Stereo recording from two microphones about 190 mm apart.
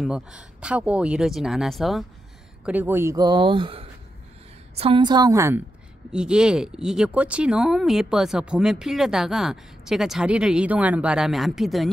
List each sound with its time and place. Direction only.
0.0 s speech: 5° right (ahead or behind)
6.1 s speech: 5° right (ahead or behind)